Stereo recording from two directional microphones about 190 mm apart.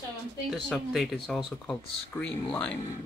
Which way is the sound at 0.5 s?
Centre (ahead or behind).